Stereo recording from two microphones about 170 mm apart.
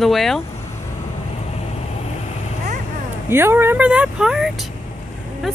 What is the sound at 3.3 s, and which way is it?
Speech, 15° right (ahead or behind).